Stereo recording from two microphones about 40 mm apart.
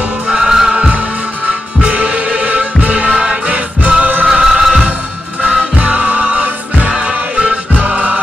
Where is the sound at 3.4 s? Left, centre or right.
Right.